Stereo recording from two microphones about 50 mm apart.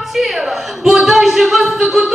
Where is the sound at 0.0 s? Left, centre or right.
Centre.